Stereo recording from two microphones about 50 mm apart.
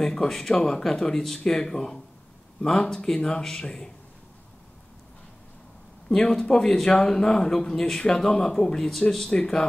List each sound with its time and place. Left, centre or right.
0.0 s speech: centre
6.0 s speech: centre